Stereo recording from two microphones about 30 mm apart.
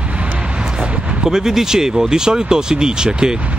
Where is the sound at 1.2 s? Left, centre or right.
Centre.